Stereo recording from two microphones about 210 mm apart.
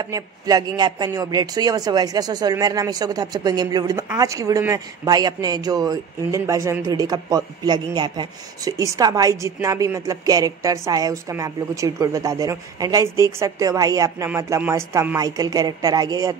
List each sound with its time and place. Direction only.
0.0 s a man's voice: 20° right (ahead or behind)